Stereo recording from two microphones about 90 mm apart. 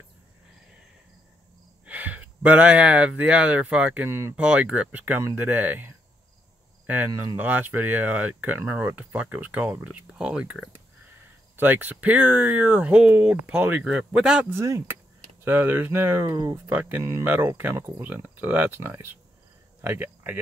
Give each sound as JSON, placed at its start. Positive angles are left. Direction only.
{"t": 1.9, "sound": "speech", "side_deg": -20}
{"t": 7.3, "sound": "speech", "side_deg": -20}
{"t": 13.8, "sound": "speech", "side_deg": -10}
{"t": 14.5, "sound": "speech", "side_deg": -30}